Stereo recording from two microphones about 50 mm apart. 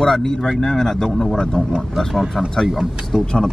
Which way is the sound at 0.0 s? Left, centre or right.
Centre.